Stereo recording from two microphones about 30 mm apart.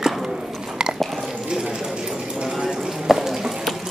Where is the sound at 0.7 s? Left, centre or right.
Right.